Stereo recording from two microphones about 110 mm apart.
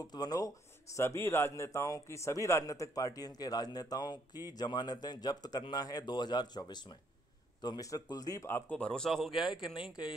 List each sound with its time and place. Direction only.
0.0 s speech: 40° left (ahead or behind)
8.5 s speech: 15° left (ahead or behind); by 10.1 s 5° right (ahead or behind)